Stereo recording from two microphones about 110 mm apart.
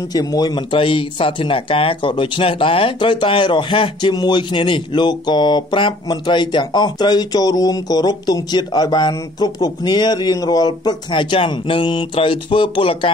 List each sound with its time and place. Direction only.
0.1 s speech: 35° left (ahead or behind)
4.1 s speech: 40° left (ahead or behind)